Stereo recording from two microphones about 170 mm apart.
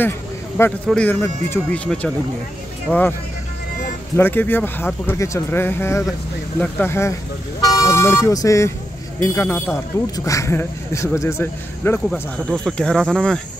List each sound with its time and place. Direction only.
0.8 s speech: 10° left (ahead or behind)
4.2 s speech: 10° left (ahead or behind)
12.1 s speech: 5° left (ahead or behind)